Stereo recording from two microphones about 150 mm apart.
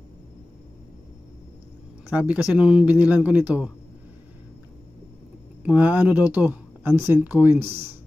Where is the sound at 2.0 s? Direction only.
10° right (ahead or behind).